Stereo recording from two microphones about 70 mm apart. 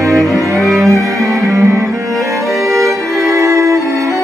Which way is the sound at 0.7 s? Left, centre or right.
Right.